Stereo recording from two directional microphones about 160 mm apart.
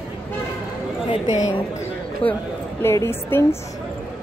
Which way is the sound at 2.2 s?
5° left (ahead or behind).